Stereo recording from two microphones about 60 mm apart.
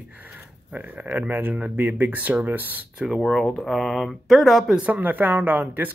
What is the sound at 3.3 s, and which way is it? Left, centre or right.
Speech, centre.